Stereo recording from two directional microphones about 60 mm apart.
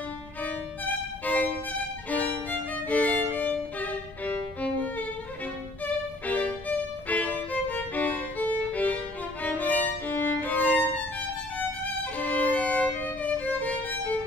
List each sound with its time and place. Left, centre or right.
0.4 s violin: left
6.2 s violin: left